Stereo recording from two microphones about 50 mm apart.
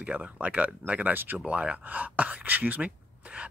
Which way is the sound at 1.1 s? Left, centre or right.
Right.